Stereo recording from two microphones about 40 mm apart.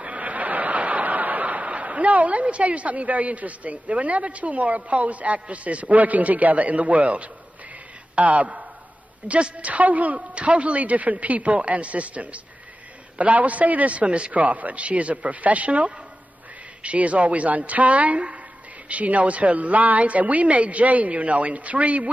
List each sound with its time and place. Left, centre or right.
0.0 s a woman's voice: right